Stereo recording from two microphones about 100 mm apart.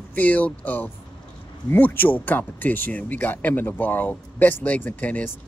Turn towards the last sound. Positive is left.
turn(degrees=15)  # may be behind; listen again after turning